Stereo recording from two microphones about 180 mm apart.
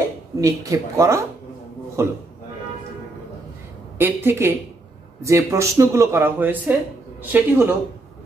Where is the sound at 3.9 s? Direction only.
10° right (ahead or behind).